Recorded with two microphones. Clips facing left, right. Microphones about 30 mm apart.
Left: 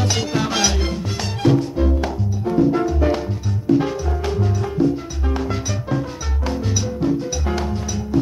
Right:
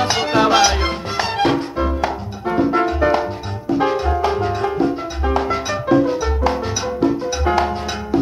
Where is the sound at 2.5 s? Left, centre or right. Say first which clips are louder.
Right 1 dB; right.